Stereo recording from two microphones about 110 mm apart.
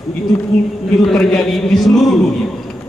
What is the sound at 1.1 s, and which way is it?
A man's voice, 5° left (ahead or behind).